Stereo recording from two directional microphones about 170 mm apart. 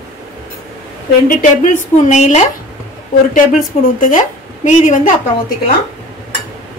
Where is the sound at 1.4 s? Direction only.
45° left (ahead or behind).